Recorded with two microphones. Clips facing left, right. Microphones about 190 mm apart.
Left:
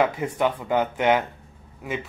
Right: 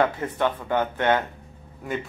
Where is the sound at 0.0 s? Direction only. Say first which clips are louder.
Left 1 dB; 10° left (ahead or behind).